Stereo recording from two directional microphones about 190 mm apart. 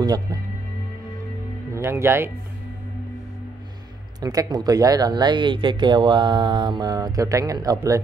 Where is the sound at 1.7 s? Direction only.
15° right (ahead or behind).